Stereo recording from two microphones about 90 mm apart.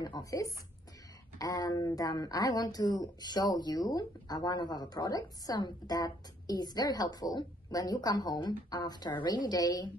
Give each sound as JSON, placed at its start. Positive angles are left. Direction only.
{"t": 0.2, "sound": "speech", "side_deg": 40}